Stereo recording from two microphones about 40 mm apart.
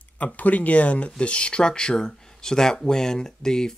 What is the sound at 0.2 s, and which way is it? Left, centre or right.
Speech, left.